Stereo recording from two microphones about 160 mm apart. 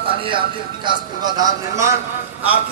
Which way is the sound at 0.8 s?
25° right (ahead or behind).